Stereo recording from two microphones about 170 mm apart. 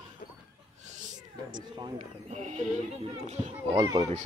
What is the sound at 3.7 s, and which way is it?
Speech, 20° right (ahead or behind).